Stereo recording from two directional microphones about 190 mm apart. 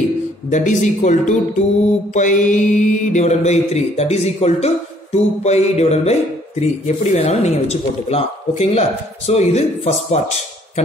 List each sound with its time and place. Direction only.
0.5 s mantra: 40° left (ahead or behind)